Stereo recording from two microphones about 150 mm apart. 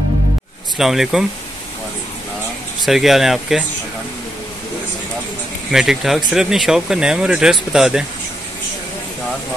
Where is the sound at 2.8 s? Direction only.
Centre (ahead or behind).